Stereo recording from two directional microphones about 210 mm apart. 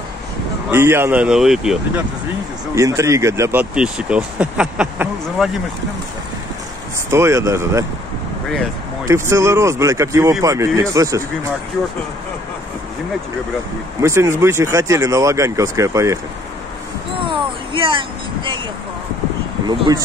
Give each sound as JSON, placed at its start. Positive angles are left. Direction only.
{"t": 0.7, "sound": "speech", "side_deg": -10}
{"t": 2.7, "sound": "speech", "side_deg": -15}
{"t": 7.1, "sound": "speech", "side_deg": -15}
{"t": 9.0, "sound": "speech", "side_deg": -15}
{"t": 14.0, "sound": "speech", "side_deg": -15}
{"t": 17.2, "sound": "vehicle", "side_deg": -25}